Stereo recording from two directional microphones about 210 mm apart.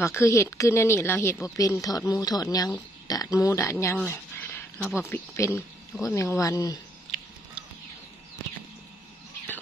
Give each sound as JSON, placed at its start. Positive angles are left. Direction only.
{"t": 0.0, "sound": "speech", "side_deg": 15}
{"t": 7.1, "sound": "biting", "side_deg": 0}